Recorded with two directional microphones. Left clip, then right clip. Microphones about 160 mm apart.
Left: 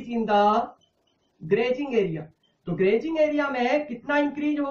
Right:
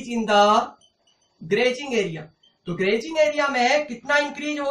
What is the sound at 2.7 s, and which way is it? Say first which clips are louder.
Speech: even; 10° left (ahead or behind).